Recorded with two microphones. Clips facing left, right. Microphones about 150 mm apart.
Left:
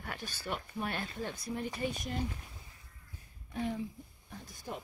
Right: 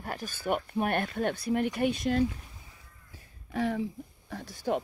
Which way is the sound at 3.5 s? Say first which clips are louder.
Right 6 dB; 80° right.